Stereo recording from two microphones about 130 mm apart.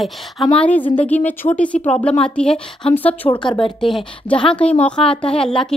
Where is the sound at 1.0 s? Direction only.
10° left (ahead or behind).